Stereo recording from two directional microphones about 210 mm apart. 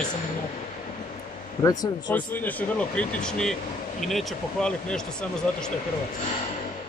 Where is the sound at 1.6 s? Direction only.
15° left (ahead or behind).